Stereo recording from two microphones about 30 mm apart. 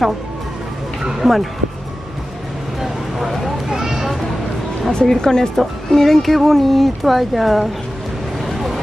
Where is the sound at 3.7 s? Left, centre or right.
Centre.